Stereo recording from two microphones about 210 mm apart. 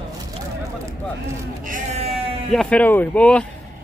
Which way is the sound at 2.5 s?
5° left (ahead or behind).